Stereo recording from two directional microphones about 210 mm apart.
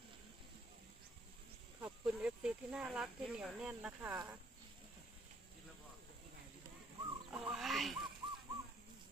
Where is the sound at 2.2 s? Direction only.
5° right (ahead or behind).